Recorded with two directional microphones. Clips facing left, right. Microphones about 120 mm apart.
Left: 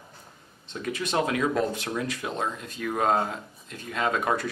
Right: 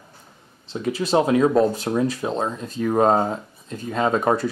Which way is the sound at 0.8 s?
30° right (ahead or behind).